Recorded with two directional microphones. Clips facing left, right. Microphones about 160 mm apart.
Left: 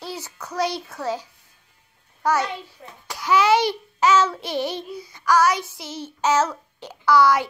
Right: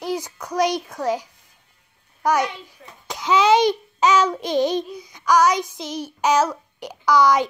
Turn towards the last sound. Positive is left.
turn(degrees=-15)  # may be behind; listen again after turning